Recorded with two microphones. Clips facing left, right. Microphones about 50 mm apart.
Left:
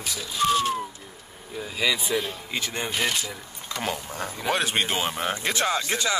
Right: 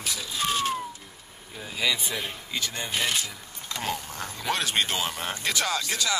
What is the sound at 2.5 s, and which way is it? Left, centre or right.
Speech, left.